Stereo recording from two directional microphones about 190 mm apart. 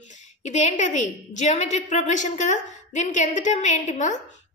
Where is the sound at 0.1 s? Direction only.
40° left (ahead or behind).